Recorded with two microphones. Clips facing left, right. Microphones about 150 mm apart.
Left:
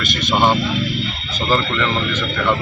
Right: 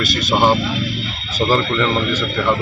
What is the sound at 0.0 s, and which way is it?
Speech, 40° right (ahead or behind).